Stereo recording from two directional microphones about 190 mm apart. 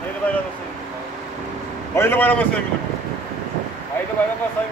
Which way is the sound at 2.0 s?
10° left (ahead or behind).